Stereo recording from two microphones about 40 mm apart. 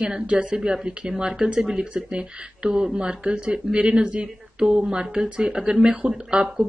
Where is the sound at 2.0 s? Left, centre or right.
Right.